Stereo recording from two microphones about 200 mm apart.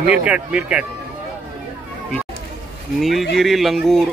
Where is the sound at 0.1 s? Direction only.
5° right (ahead or behind).